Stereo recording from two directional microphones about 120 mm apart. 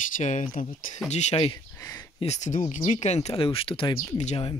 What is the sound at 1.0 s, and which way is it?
Speech, 70° left (ahead or behind).